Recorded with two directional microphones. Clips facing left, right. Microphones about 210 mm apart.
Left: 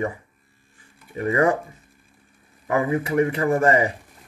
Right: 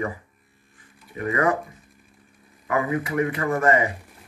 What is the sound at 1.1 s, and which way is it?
Speech, 30° left (ahead or behind).